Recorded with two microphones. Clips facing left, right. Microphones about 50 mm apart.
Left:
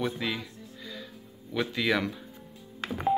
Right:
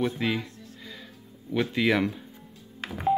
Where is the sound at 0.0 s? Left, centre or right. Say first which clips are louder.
Right 4 dB; right.